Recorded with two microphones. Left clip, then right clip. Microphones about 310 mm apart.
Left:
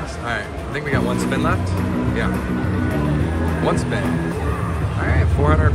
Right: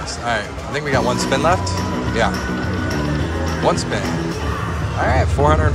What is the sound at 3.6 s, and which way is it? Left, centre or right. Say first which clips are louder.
Speech: right 4 dB; centre.